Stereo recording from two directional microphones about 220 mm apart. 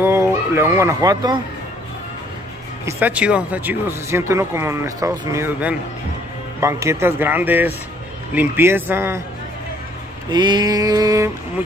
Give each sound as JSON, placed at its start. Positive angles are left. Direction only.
{"t": 0.0, "sound": "speech", "side_deg": -10}
{"t": 2.8, "sound": "speech", "side_deg": -10}
{"t": 10.3, "sound": "speech", "side_deg": -20}